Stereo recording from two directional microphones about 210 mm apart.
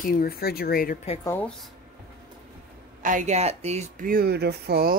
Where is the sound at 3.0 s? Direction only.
35° right (ahead or behind).